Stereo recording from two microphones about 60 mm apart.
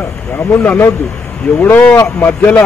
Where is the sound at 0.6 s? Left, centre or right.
Left.